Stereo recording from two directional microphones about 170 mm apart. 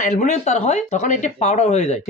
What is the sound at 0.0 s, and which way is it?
Speech, 45° left (ahead or behind).